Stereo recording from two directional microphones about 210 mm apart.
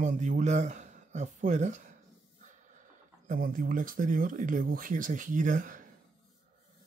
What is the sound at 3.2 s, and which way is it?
Speech, 40° right (ahead or behind).